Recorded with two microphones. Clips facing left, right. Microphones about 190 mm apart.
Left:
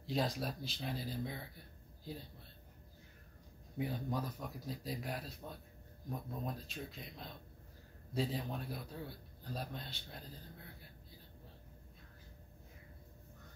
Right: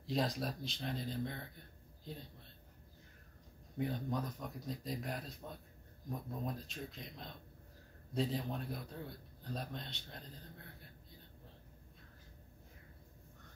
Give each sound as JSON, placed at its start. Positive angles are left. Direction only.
{"t": 0.0, "sound": "a man's voice", "side_deg": 0}
{"t": 3.7, "sound": "a man's voice", "side_deg": 5}